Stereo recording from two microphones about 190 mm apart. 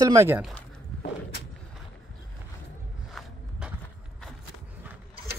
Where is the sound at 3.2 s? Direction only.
Centre (ahead or behind).